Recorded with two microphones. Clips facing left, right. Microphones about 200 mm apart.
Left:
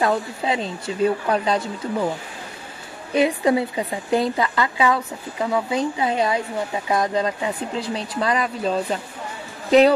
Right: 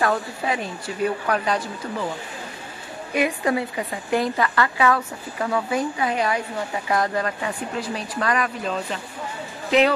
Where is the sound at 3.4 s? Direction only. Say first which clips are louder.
Left 4 dB; 20° left (ahead or behind).